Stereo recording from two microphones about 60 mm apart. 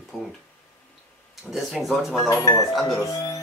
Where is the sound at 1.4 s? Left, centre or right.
Centre.